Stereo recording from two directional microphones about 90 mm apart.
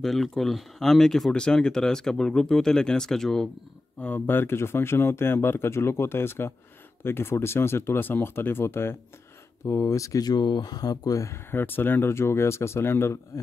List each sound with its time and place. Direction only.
0.0 s speech: centre (ahead or behind)
4.0 s speech: 20° left (ahead or behind)
9.7 s speech: 35° left (ahead or behind)
11.5 s speech: 25° left (ahead or behind)